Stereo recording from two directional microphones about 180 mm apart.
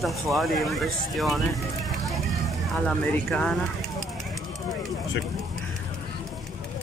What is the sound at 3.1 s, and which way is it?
Speech, 5° left (ahead or behind).